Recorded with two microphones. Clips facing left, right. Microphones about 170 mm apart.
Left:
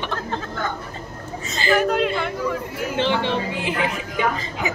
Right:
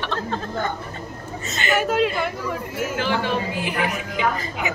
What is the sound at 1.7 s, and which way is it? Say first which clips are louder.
Speech: even; 5° right (ahead or behind).